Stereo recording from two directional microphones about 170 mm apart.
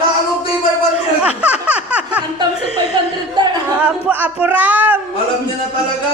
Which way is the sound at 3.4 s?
25° right (ahead or behind).